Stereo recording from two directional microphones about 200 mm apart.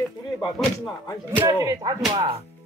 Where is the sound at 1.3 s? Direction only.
15° right (ahead or behind).